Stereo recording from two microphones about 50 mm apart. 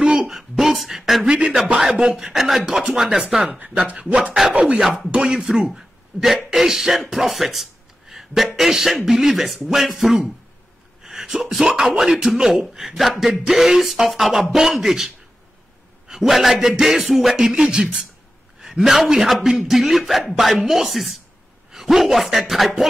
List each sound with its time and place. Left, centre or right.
0.0 s a sound: centre
0.3 s a sound: centre
1.2 s a man's voice: centre
2.3 s a man's voice: centre
3.5 s a man's voice: right
4.7 s a man's voice: centre
5.1 s a man's voice: centre